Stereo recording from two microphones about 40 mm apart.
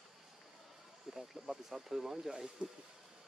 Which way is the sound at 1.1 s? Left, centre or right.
Centre.